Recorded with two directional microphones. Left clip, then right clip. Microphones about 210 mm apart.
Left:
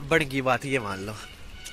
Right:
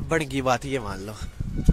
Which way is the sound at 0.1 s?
10° right (ahead or behind).